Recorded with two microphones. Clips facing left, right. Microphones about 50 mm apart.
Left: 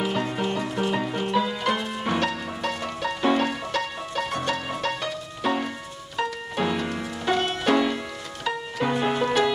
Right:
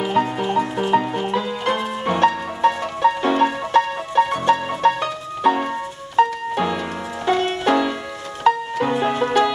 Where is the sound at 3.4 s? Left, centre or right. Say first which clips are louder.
Right 9 dB; right.